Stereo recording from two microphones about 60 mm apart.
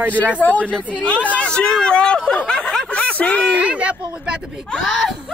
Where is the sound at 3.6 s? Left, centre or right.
Right.